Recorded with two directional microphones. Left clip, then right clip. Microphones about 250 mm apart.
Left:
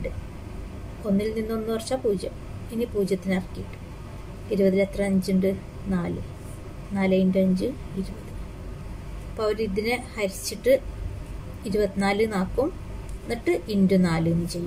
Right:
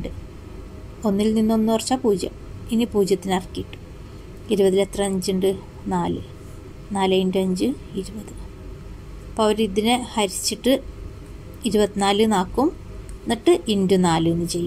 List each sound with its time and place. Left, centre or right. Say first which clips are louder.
1.1 s a woman's voice: right 6 dB; right
4.5 s a woman's voice: right 4 dB; right
9.4 s a woman's voice: right 6 dB; right